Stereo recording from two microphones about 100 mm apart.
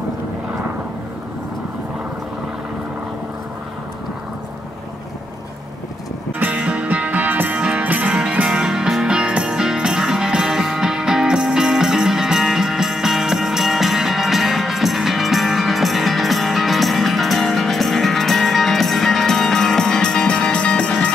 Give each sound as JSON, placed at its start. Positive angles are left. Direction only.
{"t": 6.4, "sound": "music", "side_deg": -15}